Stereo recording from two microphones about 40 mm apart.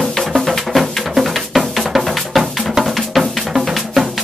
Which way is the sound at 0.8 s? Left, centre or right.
Centre.